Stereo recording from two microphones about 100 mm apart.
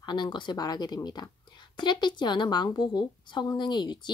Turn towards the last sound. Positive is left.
turn(degrees=50)  # may be behind; listen again after turning